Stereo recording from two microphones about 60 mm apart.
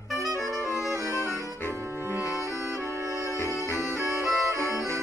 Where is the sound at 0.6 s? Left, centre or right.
Left.